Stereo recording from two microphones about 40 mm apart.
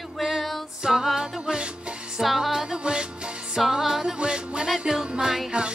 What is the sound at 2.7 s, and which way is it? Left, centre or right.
Music, right.